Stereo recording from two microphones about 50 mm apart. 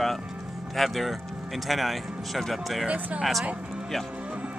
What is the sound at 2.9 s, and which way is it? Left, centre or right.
Speech, right.